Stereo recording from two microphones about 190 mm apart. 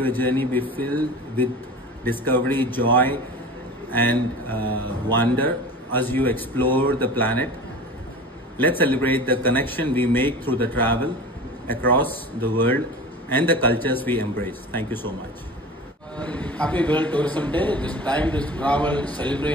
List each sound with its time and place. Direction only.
0.0 s a man's voice: 10° left (ahead or behind)
8.5 s a man's voice: 10° left (ahead or behind)
16.2 s a man's voice: 10° left (ahead or behind)